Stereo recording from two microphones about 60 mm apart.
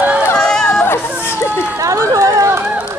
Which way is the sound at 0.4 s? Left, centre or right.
Centre.